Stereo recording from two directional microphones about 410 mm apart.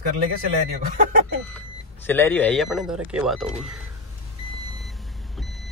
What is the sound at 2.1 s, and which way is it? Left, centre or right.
Speech, centre.